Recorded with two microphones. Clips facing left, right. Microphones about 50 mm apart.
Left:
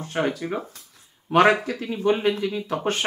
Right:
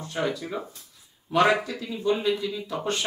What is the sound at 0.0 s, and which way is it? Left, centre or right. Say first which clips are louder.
Speech: left 3 dB; left.